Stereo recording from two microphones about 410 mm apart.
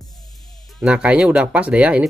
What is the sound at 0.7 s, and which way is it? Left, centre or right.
Speech, centre.